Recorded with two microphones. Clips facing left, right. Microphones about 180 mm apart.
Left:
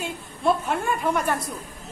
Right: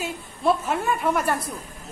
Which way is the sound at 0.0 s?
Centre (ahead or behind).